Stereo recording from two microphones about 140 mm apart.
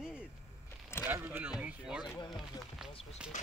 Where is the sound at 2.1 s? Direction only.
30° left (ahead or behind).